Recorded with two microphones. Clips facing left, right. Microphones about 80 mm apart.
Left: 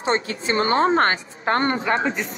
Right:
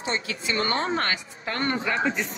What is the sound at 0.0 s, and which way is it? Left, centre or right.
Speech, left.